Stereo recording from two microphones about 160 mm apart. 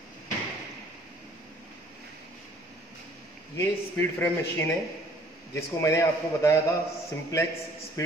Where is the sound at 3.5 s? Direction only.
15° left (ahead or behind).